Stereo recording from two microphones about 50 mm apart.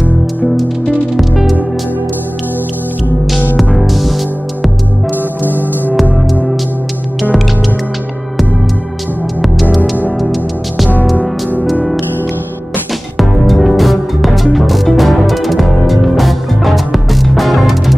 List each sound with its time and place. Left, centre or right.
0.6 s music: centre
3.7 s music: centre
5.4 s music: right
9.4 s music: centre
13.2 s music: centre